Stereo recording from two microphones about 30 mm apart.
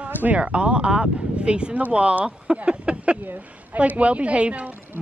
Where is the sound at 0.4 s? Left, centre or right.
Right.